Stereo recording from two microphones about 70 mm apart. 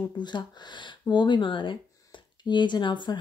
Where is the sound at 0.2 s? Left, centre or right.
Left.